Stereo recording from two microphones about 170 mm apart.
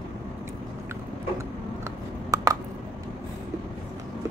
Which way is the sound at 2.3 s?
20° right (ahead or behind).